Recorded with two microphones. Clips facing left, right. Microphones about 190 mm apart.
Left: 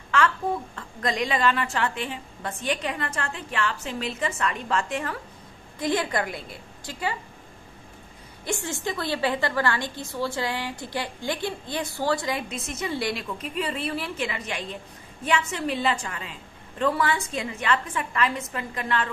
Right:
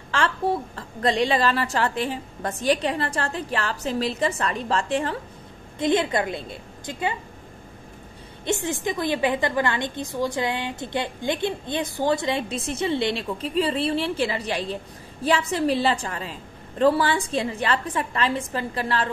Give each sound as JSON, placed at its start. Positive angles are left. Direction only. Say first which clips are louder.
{"t": 0.1, "sound": "a woman's voice", "louder": "right 1 dB", "side_deg": -30}
{"t": 8.5, "sound": "a woman's voice", "louder": "right 4 dB", "side_deg": -20}